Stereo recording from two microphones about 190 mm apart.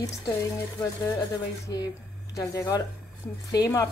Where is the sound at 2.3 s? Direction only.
20° left (ahead or behind).